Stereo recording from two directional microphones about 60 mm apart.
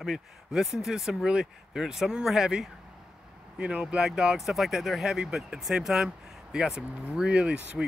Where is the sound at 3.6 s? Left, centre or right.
Centre.